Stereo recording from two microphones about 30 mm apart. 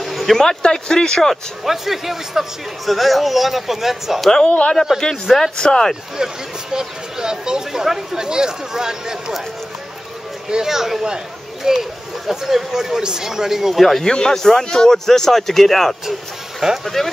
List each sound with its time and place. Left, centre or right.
0.0 s a sound: centre
0.6 s speech: left
1.6 s a man's voice: centre
4.5 s speech: left
5.2 s a man's voice: centre
5.6 s speech: left
6.1 s speech: right
8.3 s speech: right
10.5 s speech: centre
14.0 s a man's voice: left; by 17.1 s centre